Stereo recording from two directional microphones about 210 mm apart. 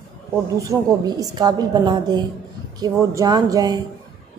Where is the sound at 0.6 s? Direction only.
15° right (ahead or behind).